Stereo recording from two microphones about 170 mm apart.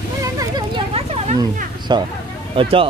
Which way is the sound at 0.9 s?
35° right (ahead or behind).